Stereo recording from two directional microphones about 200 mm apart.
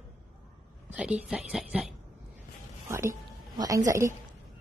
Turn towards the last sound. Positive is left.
turn(degrees=-15)  # may be behind; listen again after turning